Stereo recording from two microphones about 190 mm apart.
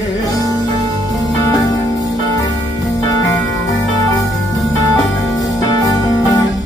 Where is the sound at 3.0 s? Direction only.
20° left (ahead or behind).